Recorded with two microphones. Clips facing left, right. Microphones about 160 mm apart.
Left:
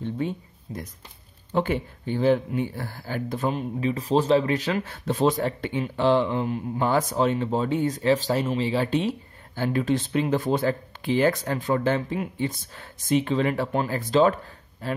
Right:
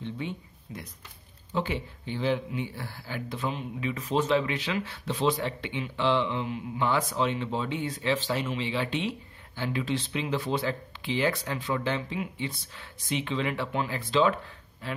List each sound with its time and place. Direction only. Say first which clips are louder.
0.0 s speech: left 6 dB; 40° left (ahead or behind)
3.9 s speech: left 5 dB; 35° left (ahead or behind)